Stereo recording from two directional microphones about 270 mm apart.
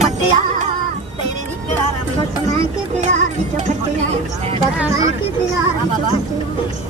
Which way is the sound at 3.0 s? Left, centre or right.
Right.